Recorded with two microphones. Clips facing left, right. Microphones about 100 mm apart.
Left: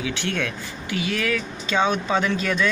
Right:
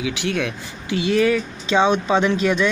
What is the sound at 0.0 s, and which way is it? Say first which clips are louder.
Speech: right 3 dB; 15° right (ahead or behind).